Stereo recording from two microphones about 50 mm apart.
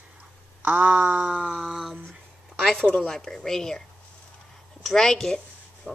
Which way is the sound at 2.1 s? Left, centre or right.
Centre.